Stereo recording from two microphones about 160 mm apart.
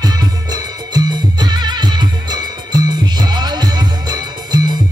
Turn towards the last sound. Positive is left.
turn(degrees=-25)  # may be behind; listen again after turning